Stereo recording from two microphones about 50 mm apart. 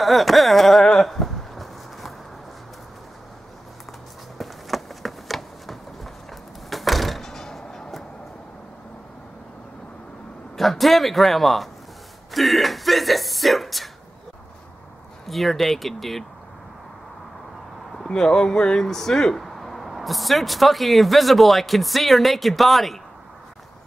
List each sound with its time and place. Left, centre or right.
0.0 s speech: centre
1.0 s a sound: centre
4.4 s a sound: centre
10.5 s a man's voice: centre
15.2 s speech: centre
17.9 s speech: centre